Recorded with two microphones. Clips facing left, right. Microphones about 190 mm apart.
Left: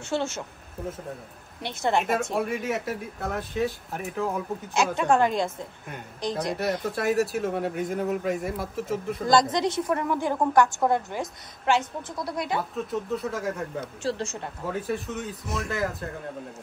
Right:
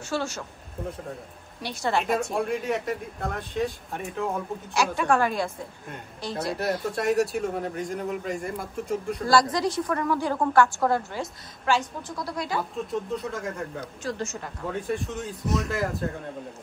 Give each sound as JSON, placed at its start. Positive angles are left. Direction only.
{"t": 0.1, "sound": "a woman's voice", "side_deg": 25}
{"t": 1.6, "sound": "a woman's voice", "side_deg": 20}
{"t": 2.3, "sound": "a man's voice", "side_deg": 5}
{"t": 4.9, "sound": "a woman's voice", "side_deg": 20}
{"t": 6.5, "sound": "a man's voice", "side_deg": 0}
{"t": 9.2, "sound": "a woman's voice", "side_deg": 20}
{"t": 12.5, "sound": "a man's voice", "side_deg": 5}
{"t": 14.0, "sound": "speech", "side_deg": 30}
{"t": 14.7, "sound": "a man's voice", "side_deg": 0}